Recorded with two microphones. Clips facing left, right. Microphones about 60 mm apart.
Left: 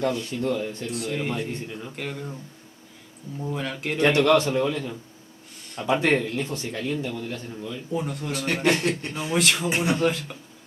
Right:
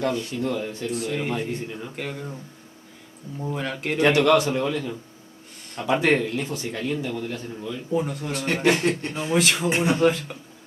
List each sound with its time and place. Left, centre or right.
0.0 s speech: centre
3.3 s a man's voice: centre